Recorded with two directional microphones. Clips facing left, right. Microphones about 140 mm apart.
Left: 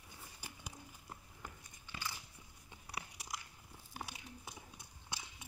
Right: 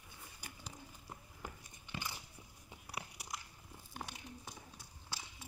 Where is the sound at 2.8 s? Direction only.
5° right (ahead or behind).